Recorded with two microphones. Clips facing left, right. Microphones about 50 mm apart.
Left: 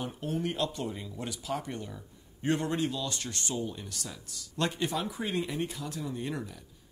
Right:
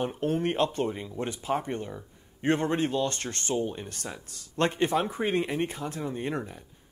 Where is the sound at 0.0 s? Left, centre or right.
Right.